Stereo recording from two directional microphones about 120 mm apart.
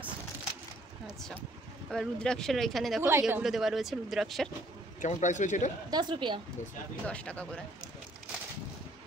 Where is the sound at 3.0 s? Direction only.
20° right (ahead or behind).